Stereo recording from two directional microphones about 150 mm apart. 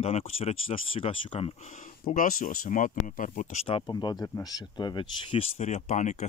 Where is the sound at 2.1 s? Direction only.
70° left (ahead or behind).